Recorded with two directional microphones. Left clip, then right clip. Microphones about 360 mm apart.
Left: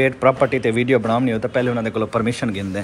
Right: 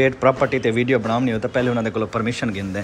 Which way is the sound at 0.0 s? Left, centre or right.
Centre.